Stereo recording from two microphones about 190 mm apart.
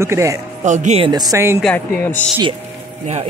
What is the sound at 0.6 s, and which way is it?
Speech, 40° right (ahead or behind).